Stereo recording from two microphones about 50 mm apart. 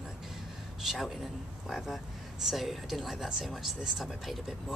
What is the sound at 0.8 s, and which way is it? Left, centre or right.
Speech, centre.